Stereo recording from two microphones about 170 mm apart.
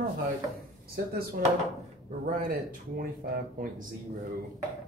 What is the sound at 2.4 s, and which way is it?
Speech, 55° right (ahead or behind).